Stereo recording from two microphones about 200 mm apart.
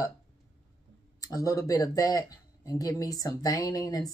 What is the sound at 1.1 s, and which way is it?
Speech, 15° left (ahead or behind).